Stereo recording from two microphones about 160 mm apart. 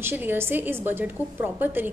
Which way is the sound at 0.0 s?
15° right (ahead or behind).